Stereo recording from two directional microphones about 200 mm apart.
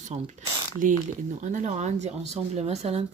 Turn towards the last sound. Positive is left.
turn(degrees=-30)  # may be behind; listen again after turning